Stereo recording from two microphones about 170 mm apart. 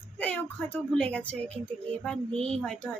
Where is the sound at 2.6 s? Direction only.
5° left (ahead or behind).